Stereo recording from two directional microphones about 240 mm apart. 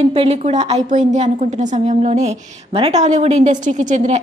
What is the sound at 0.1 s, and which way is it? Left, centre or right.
A woman's voice, right.